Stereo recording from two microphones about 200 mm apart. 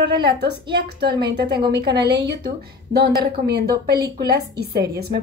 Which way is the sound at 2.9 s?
50° right (ahead or behind).